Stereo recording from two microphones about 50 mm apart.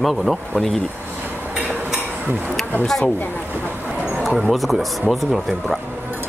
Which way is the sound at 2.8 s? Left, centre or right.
Centre.